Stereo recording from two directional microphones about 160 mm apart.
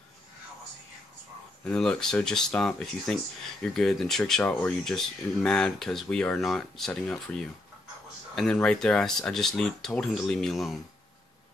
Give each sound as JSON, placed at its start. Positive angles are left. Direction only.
{"t": 1.6, "sound": "speech", "side_deg": 5}